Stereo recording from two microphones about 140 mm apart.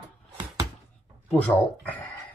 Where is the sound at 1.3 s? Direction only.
10° left (ahead or behind).